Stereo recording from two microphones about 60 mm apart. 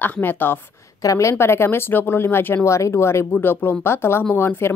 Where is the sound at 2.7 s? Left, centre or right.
Left.